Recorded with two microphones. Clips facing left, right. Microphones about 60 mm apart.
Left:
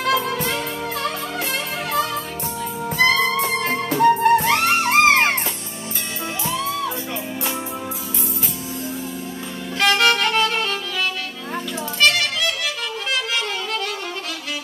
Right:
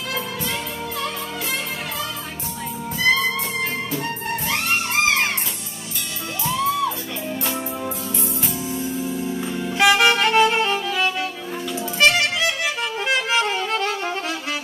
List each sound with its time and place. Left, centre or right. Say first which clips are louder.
0.0 s music: left 7 dB; left
6.5 s music: right 5 dB; centre
9.8 s music: right 1 dB; centre; by 13.9 s right